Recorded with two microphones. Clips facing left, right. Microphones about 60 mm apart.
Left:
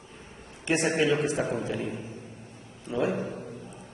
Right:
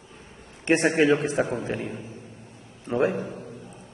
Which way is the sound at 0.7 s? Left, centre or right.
Right.